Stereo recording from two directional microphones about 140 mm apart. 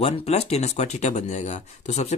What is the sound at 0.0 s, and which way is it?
Speech, 50° left (ahead or behind).